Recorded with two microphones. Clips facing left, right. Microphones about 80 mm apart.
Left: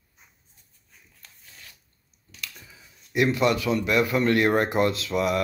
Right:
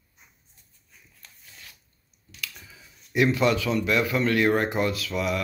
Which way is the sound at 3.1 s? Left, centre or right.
Centre.